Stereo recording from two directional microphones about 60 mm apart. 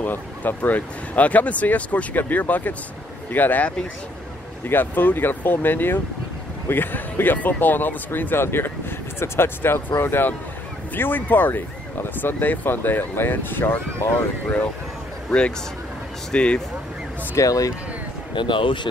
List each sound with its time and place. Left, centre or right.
0.0 s speech: left
16.3 s speech: centre
17.4 s speech: left